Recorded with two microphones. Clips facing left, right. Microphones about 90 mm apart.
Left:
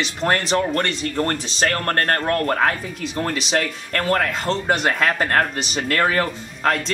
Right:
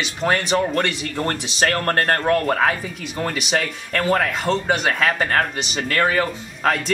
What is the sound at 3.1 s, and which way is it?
Speech, 5° right (ahead or behind).